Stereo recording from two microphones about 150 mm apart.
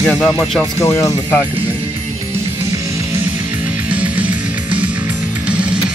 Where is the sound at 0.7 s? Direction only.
15° left (ahead or behind).